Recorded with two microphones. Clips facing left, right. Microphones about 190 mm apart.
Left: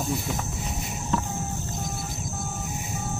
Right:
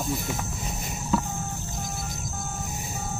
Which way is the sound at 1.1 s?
5° right (ahead or behind).